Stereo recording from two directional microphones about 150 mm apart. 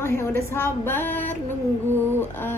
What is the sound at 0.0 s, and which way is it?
Speech, 15° left (ahead or behind).